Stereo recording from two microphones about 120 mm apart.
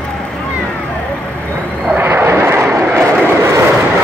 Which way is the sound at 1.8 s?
15° right (ahead or behind).